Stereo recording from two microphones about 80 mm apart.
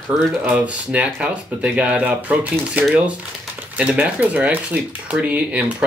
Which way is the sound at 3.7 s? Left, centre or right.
Centre.